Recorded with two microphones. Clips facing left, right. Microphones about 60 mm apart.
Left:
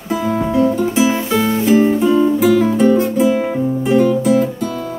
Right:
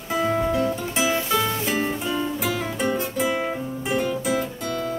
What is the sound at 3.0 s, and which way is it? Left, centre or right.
Guitar, centre.